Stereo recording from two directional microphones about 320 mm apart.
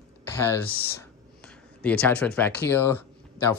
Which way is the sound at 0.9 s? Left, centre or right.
Centre.